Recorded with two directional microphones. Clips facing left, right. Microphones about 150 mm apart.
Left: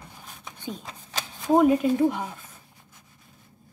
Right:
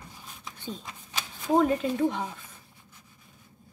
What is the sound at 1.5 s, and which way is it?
Speech, 10° left (ahead or behind).